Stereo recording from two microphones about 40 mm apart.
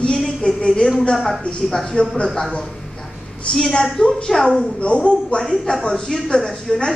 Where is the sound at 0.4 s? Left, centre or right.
Left.